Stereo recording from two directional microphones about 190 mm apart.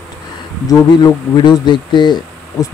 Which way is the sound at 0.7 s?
20° left (ahead or behind).